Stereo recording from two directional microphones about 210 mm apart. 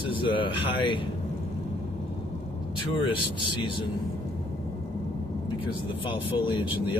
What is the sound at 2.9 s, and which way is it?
Speech, 25° left (ahead or behind).